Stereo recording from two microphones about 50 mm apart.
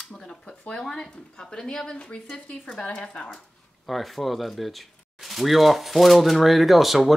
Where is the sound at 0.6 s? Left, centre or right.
Centre.